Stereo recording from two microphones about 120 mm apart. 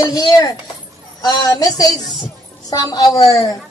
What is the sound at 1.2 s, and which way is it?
A woman's voice, 30° left (ahead or behind).